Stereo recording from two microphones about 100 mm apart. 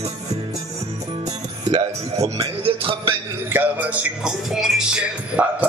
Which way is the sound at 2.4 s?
65° right (ahead or behind).